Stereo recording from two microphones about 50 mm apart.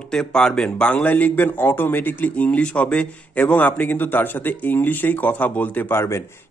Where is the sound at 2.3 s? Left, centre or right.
Left.